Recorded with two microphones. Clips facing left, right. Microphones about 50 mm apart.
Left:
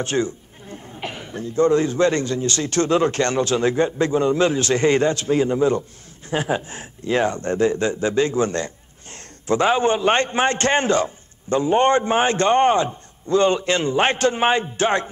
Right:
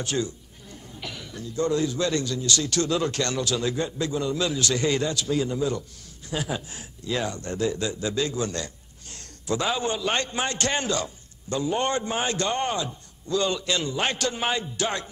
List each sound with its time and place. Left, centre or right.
0.0 s a man's voice: left